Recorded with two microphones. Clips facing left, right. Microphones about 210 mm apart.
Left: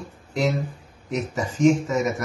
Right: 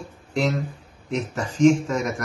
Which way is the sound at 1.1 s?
5° left (ahead or behind).